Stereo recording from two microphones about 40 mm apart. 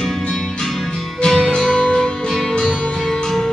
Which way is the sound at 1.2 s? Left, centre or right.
Centre.